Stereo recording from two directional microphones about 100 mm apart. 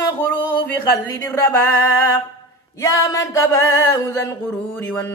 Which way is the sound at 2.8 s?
30° left (ahead or behind).